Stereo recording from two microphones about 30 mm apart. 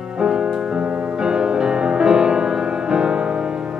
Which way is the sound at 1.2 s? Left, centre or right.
Right.